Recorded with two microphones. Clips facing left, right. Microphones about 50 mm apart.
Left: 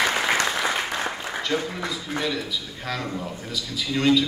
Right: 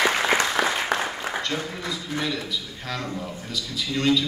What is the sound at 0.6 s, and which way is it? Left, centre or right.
Applause, right.